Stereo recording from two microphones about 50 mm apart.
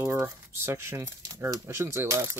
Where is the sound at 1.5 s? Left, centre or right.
Right.